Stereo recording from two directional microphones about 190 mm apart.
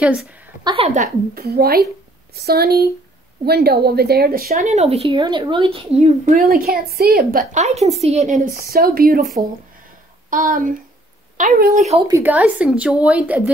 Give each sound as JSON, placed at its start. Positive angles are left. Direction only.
{"t": 0.0, "sound": "a woman's voice", "side_deg": -5}
{"t": 0.7, "sound": "a woman's voice", "side_deg": -30}
{"t": 1.3, "sound": "a woman's voice", "side_deg": -55}
{"t": 6.5, "sound": "a woman's voice", "side_deg": -55}
{"t": 10.3, "sound": "a woman's voice", "side_deg": -45}
{"t": 12.1, "sound": "speech", "side_deg": -10}